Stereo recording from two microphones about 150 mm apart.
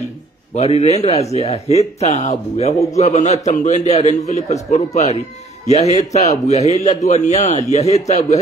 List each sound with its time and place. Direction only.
0.6 s speech: 45° left (ahead or behind)